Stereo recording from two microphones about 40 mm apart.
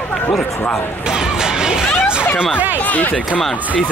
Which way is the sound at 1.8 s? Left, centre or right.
Left.